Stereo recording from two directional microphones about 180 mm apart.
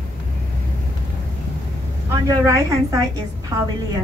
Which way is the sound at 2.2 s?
15° right (ahead or behind).